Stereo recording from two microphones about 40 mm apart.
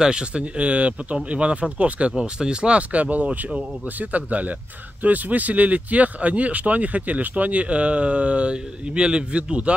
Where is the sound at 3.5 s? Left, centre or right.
Right.